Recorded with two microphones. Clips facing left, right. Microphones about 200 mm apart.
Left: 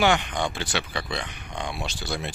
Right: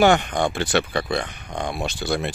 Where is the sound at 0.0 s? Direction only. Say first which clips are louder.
Right 5 dB; 45° right (ahead or behind).